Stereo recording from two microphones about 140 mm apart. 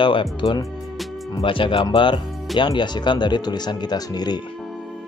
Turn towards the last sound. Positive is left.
turn(degrees=30)  # may be behind; listen again after turning